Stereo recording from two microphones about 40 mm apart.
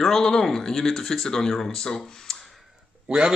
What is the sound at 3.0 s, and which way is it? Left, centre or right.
Speech, right.